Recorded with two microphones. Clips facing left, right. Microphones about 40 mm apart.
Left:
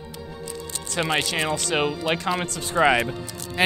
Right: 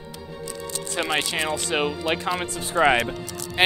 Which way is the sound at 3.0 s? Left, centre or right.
Right.